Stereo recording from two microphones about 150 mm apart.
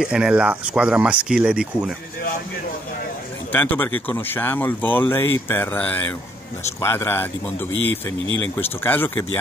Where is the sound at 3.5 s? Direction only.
15° left (ahead or behind).